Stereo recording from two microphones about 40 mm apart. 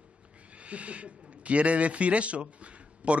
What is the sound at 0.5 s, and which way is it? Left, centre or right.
A man's voice, right.